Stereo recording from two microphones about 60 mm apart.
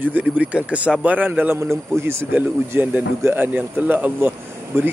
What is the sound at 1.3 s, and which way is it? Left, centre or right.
Speech, right.